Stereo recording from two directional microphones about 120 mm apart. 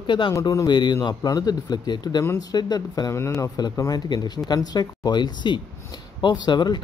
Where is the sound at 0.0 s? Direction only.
45° left (ahead or behind).